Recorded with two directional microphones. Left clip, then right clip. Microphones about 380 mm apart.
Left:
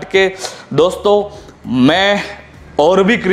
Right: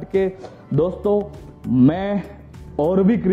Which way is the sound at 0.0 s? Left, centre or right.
Centre.